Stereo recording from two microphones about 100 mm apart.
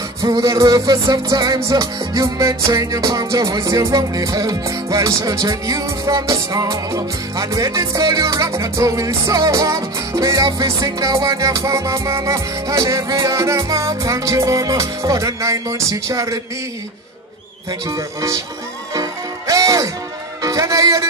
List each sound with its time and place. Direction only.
0.3 s music: 35° right (ahead or behind)
17.8 s music: 35° right (ahead or behind)